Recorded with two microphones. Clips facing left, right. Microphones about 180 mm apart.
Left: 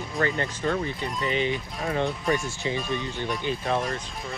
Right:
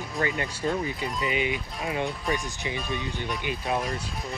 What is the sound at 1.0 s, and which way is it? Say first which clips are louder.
Speech: left 1 dB; centre (ahead or behind).